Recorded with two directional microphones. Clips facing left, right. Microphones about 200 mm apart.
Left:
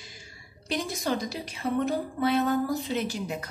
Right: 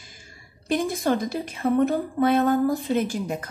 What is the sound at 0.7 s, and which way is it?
A woman's voice, 50° right (ahead or behind).